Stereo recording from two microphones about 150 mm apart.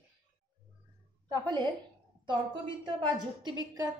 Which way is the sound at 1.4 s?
30° right (ahead or behind).